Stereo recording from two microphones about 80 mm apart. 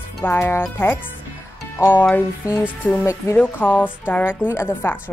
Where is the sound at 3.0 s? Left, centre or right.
Left.